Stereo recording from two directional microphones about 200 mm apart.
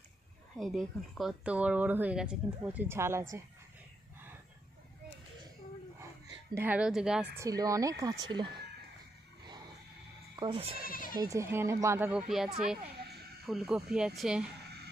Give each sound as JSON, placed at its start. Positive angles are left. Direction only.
{"t": 0.6, "sound": "a woman's voice", "side_deg": 0}
{"t": 6.5, "sound": "a woman's voice", "side_deg": -10}
{"t": 7.3, "sound": "a woman's voice", "side_deg": -15}
{"t": 10.3, "sound": "speech", "side_deg": -25}
{"t": 10.8, "sound": "speech", "side_deg": 45}
{"t": 11.1, "sound": "a woman's voice", "side_deg": -15}